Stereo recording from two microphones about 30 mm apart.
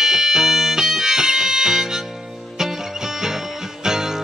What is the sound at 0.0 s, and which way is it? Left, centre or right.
Music, centre.